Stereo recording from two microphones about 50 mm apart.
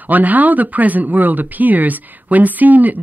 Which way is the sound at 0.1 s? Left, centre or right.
Right.